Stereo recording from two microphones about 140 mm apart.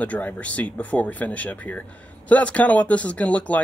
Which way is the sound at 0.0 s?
10° left (ahead or behind).